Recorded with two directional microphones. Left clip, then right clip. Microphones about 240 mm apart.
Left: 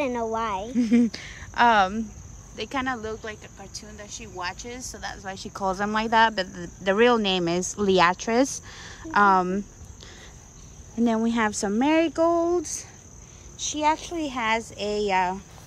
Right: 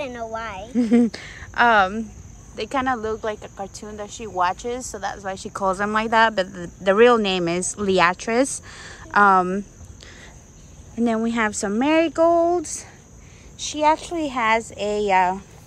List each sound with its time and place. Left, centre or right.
0.0 s speech: left
0.7 s speech: centre
11.0 s speech: centre